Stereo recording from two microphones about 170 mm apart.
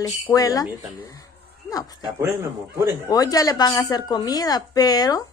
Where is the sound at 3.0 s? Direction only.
20° left (ahead or behind).